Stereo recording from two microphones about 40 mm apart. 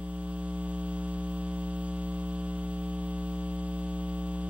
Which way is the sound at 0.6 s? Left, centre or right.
Right.